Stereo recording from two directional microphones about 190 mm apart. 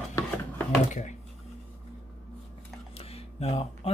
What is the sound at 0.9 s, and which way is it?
Speech, 40° left (ahead or behind).